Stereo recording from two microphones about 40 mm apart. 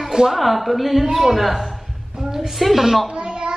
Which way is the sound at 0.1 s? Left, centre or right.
Centre.